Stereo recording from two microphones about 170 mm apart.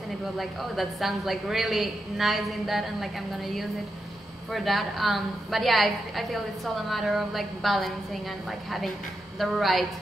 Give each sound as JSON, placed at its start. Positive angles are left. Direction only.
{"t": 0.4, "sound": "a woman's voice", "side_deg": 0}